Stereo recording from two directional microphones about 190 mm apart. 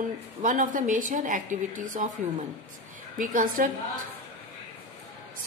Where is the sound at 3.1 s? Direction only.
45° right (ahead or behind).